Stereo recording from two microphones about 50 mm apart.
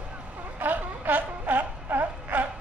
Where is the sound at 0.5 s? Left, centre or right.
Right.